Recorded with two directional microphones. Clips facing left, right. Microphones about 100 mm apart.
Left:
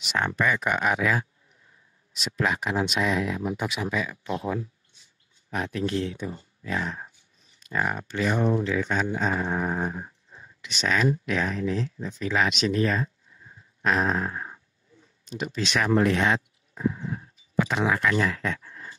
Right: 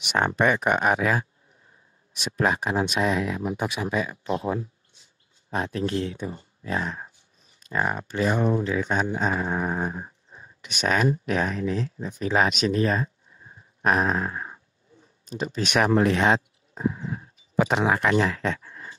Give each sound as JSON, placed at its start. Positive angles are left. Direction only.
{"t": 0.2, "sound": "speech", "side_deg": -30}
{"t": 2.3, "sound": "speech", "side_deg": -40}
{"t": 10.7, "sound": "speech", "side_deg": -45}
{"t": 13.8, "sound": "a sound", "side_deg": -45}
{"t": 15.2, "sound": "speech", "side_deg": -35}